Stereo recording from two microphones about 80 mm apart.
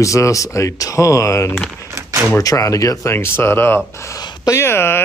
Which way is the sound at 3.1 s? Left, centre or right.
Left.